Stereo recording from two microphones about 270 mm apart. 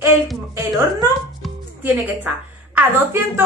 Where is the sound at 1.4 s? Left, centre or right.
Centre.